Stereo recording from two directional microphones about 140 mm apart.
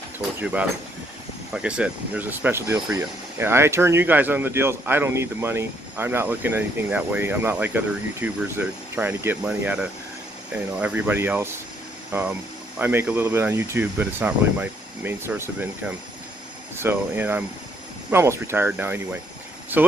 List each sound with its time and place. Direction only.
0.4 s speech: 10° right (ahead or behind)
16.7 s speech: 15° right (ahead or behind)